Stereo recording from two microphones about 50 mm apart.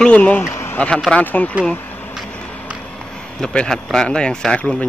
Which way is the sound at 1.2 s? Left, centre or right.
Left.